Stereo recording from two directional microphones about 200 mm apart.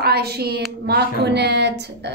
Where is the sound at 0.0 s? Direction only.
50° right (ahead or behind).